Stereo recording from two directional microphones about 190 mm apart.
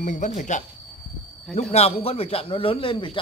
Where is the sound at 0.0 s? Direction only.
40° left (ahead or behind).